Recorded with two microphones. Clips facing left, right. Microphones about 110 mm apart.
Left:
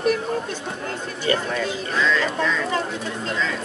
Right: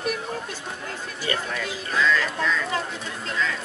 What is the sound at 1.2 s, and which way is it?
Speech, 30° left (ahead or behind).